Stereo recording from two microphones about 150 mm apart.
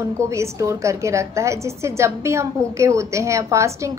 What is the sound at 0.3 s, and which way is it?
A woman's voice, 20° right (ahead or behind).